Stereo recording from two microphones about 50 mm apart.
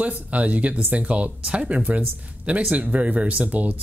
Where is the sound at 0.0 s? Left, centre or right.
Right.